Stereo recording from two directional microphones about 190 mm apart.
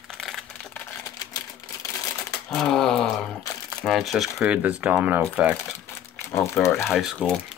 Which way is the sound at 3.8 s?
Centre (ahead or behind).